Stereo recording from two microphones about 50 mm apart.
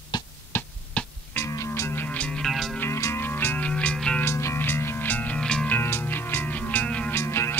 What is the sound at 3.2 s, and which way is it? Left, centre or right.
Music, left.